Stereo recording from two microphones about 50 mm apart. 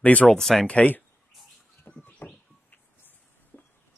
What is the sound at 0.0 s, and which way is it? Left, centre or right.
Speech, left.